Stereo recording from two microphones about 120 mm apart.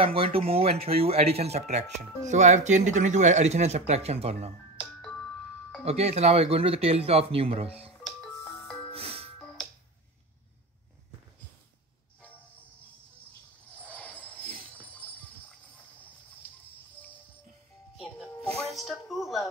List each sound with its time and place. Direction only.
0.0 s speech: 50° right (ahead or behind)
4.7 s music: 10° left (ahead or behind)
5.9 s speech: 60° right (ahead or behind)
8.4 s music: 20° left (ahead or behind)
8.9 s music: 55° right (ahead or behind)
13.9 s jingle bell: 10° left (ahead or behind)
17.0 s music: 15° left (ahead or behind); by 19.5 s centre (ahead or behind)